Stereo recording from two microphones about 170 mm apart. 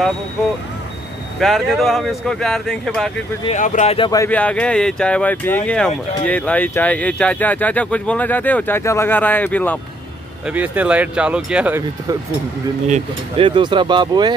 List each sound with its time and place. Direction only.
1.4 s speech: centre (ahead or behind)
3.5 s speech: 45° left (ahead or behind)
4.0 s speech: 20° left (ahead or behind)
4.3 s speech: 10° left (ahead or behind)
10.4 s speech: 10° right (ahead or behind)
13.4 s speech: 30° right (ahead or behind)